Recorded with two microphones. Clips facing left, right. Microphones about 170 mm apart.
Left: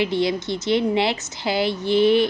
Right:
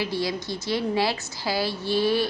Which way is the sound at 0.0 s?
20° left (ahead or behind).